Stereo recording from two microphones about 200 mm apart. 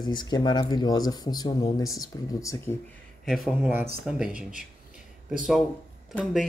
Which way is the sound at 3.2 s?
Centre (ahead or behind).